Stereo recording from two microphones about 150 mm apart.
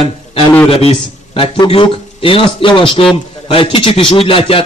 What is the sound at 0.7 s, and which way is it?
A man's voice, 40° left (ahead or behind).